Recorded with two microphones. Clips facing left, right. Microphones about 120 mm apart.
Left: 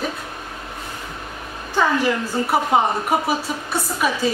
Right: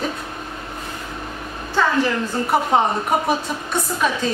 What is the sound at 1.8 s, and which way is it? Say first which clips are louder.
Speech: even; 15° left (ahead or behind).